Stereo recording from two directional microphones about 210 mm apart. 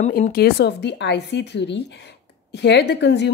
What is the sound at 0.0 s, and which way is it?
A woman's voice, 40° left (ahead or behind).